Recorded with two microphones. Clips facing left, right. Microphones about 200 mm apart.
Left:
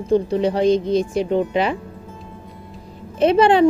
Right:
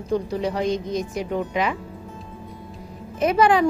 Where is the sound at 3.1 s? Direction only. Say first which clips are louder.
Left 4 dB; 30° left (ahead or behind).